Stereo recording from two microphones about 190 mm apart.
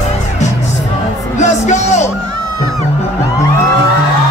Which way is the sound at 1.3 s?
40° left (ahead or behind).